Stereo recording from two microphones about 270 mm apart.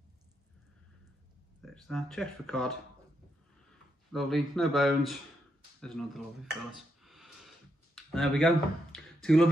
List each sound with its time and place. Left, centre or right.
1.6 s speech: centre
4.1 s speech: centre